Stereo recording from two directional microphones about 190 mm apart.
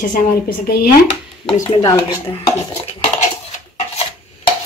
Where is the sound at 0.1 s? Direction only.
50° left (ahead or behind).